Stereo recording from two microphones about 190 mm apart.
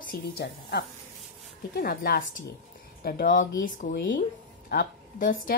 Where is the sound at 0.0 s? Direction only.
50° left (ahead or behind).